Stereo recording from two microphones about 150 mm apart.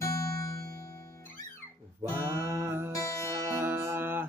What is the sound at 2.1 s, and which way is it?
Music, 15° right (ahead or behind).